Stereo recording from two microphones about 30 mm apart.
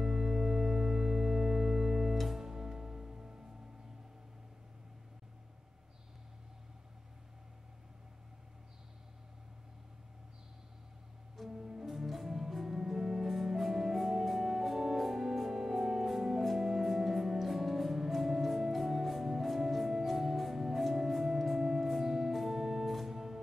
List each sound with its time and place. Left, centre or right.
0.0 s music: centre
11.5 s music: centre
12.1 s music: centre
23.1 s music: centre